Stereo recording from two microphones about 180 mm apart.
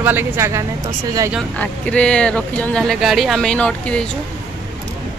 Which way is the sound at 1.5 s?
5° left (ahead or behind).